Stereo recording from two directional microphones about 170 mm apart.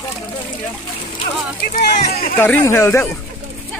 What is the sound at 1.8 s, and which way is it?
Speech, 65° left (ahead or behind).